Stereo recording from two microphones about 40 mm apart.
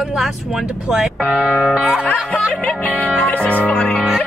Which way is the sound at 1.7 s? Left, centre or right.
Right.